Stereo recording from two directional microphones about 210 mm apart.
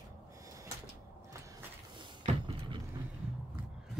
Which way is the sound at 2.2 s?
25° right (ahead or behind).